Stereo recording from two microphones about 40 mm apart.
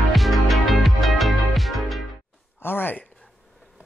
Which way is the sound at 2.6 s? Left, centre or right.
Left.